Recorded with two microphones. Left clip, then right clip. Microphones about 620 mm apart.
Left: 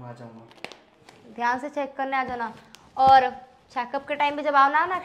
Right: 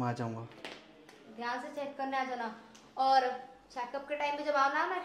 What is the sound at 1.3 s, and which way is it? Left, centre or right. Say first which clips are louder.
Speech: left 12 dB; left.